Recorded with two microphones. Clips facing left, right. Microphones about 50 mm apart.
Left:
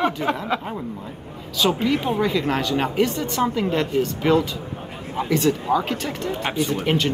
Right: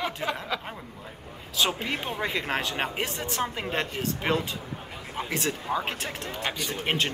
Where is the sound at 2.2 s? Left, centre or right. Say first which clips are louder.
Left 7 dB; right.